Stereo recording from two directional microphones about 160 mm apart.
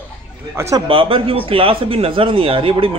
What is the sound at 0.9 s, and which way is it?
Speech, 35° right (ahead or behind).